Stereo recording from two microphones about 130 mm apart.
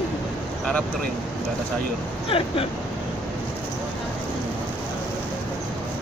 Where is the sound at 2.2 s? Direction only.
45° left (ahead or behind).